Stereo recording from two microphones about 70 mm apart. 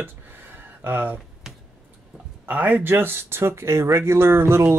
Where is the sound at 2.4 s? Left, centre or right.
Right.